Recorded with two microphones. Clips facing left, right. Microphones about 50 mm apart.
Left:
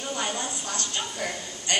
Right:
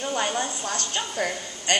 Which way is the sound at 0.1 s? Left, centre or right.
Right.